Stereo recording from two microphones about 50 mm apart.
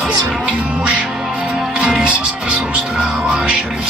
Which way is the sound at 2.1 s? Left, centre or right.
Right.